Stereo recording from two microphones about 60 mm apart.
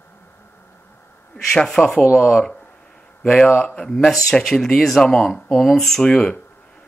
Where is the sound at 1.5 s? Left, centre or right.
Centre.